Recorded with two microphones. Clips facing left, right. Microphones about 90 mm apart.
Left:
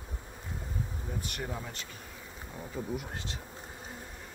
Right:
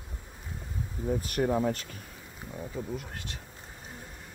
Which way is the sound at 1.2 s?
40° right (ahead or behind).